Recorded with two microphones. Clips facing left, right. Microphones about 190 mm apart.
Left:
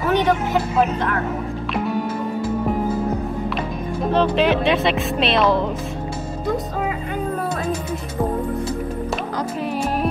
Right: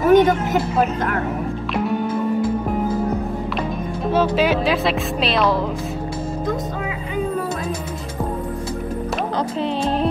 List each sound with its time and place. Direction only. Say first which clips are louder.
0.1 s speech: right 4 dB; 45° right (ahead or behind)
4.1 s speech: even; 5° right (ahead or behind)